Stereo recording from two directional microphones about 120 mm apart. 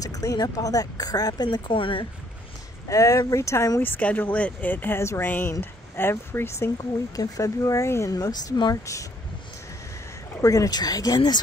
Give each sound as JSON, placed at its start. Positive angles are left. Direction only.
{"t": 0.0, "sound": "speech", "side_deg": 30}
{"t": 2.9, "sound": "speech", "side_deg": 25}
{"t": 3.8, "sound": "speech", "side_deg": 15}
{"t": 10.4, "sound": "speech", "side_deg": 30}